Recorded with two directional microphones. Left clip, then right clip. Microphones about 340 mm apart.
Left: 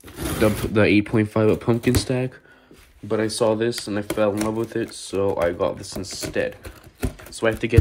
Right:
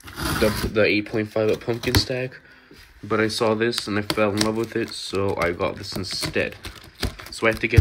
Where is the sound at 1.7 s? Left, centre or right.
Left.